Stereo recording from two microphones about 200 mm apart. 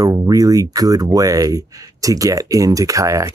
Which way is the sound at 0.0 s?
15° right (ahead or behind).